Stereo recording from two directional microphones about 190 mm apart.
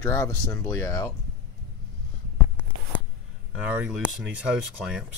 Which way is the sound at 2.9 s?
10° left (ahead or behind).